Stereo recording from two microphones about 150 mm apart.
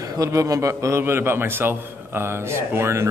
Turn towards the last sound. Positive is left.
turn(degrees=-20)  # may be behind; listen again after turning